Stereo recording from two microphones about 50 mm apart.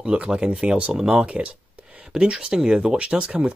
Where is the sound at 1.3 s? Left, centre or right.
Right.